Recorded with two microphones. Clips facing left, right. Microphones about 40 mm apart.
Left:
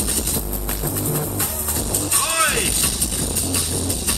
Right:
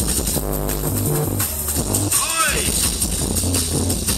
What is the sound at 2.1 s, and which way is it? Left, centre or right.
Music, left.